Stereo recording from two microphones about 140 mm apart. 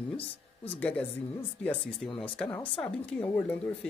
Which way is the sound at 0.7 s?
10° left (ahead or behind).